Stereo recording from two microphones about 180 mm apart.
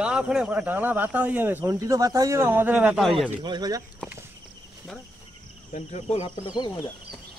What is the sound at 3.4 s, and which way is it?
Speech, 20° right (ahead or behind).